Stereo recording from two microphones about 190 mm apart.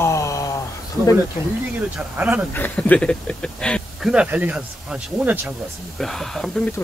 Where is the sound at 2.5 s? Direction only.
10° left (ahead or behind).